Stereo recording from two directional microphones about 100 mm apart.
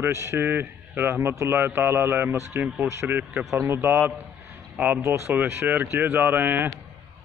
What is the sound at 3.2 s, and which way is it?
Speech, 15° right (ahead or behind).